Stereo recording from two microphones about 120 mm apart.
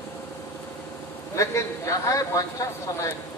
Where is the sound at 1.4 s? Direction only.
25° left (ahead or behind).